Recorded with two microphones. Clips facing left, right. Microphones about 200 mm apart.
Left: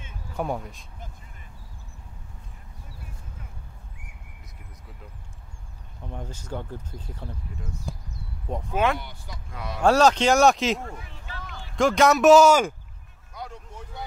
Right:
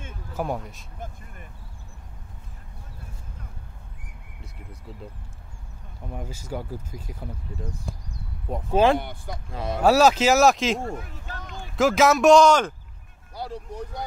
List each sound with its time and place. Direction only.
0.3 s speech: centre (ahead or behind)
0.9 s vehicle: 50° right (ahead or behind)
6.1 s speech: 10° right (ahead or behind)
8.7 s speech: 30° right (ahead or behind)
9.0 s speech: 55° right (ahead or behind)
9.8 s speech: 5° right (ahead or behind)
10.9 s speech: 45° right (ahead or behind)
11.7 s speech: 5° right (ahead or behind)
13.3 s speech: 35° right (ahead or behind)